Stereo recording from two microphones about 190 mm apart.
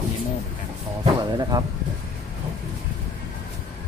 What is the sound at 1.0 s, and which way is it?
Speech, 20° right (ahead or behind).